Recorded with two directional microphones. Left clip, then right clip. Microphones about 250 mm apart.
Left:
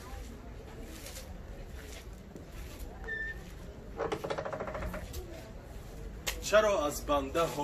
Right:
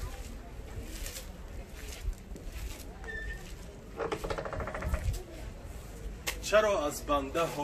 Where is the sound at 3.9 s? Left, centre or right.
Centre.